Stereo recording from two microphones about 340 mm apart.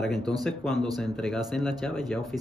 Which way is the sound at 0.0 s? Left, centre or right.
Centre.